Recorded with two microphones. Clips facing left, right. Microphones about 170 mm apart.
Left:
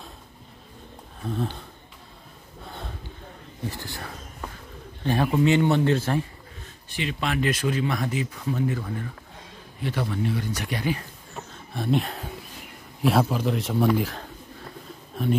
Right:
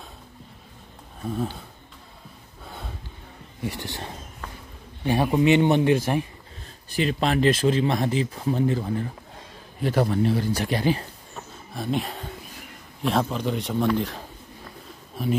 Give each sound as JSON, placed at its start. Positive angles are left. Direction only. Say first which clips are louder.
{"t": 1.2, "sound": "speech", "louder": "right 1 dB", "side_deg": -5}
{"t": 3.6, "sound": "speech", "louder": "right 3 dB", "side_deg": -20}
{"t": 6.9, "sound": "speech", "louder": "right 5 dB", "side_deg": -40}
{"t": 9.8, "sound": "speech", "louder": "right 6 dB", "side_deg": -40}
{"t": 11.3, "sound": "a sound", "louder": "left 1 dB", "side_deg": 0}
{"t": 13.0, "sound": "a man's voice", "louder": "left 2 dB", "side_deg": 5}